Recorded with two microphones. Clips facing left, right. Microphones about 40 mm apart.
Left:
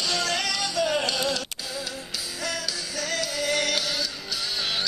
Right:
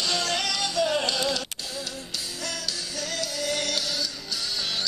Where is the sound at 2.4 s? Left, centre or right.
Centre.